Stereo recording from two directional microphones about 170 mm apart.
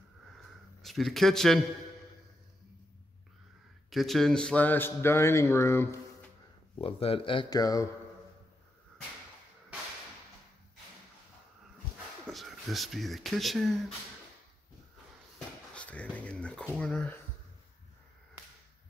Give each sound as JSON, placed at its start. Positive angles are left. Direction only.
{"t": 0.8, "sound": "speech", "side_deg": 0}
{"t": 3.9, "sound": "speech", "side_deg": 0}
{"t": 6.8, "sound": "speech", "side_deg": 35}
{"t": 12.3, "sound": "speech", "side_deg": 0}
{"t": 15.3, "sound": "a sound", "side_deg": 5}